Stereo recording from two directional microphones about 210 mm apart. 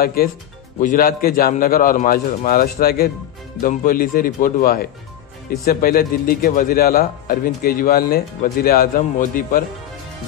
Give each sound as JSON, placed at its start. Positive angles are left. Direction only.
{"t": 0.0, "sound": "a man's voice", "side_deg": 45}